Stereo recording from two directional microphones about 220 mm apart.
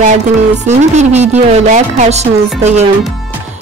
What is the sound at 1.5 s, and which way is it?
Music, 30° right (ahead or behind).